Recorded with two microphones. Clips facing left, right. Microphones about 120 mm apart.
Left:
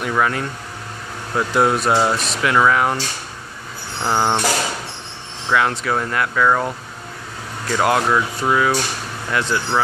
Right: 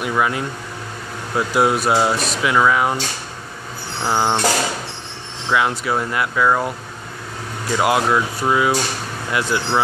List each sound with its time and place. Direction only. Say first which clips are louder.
0.0 s speech: even; 10° right (ahead or behind)
1.5 s speech: even; 5° right (ahead or behind)
4.0 s speech: even; centre (ahead or behind)
5.5 s speech: even; 10° right (ahead or behind)
7.7 s speech: even; 10° right (ahead or behind)